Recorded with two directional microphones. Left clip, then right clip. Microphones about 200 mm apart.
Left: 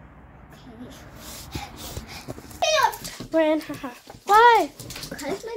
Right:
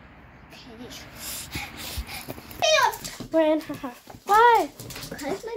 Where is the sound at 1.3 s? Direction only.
45° left (ahead or behind).